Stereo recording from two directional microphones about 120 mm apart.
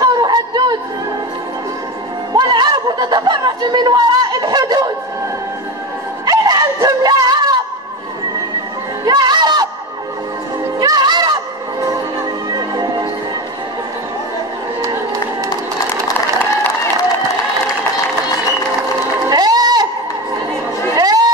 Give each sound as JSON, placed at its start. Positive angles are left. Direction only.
{"t": 0.0, "sound": "a sound", "side_deg": -35}
{"t": 2.3, "sound": "chatter", "side_deg": -35}
{"t": 6.2, "sound": "dog", "side_deg": -30}
{"t": 9.0, "sound": "music", "side_deg": -35}
{"t": 10.8, "sound": "music", "side_deg": -35}
{"t": 12.4, "sound": "music", "side_deg": -35}
{"t": 19.2, "sound": "a sound", "side_deg": -35}
{"t": 20.9, "sound": "chatter", "side_deg": -30}